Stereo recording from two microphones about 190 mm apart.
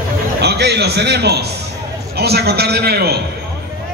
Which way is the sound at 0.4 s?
60° right (ahead or behind).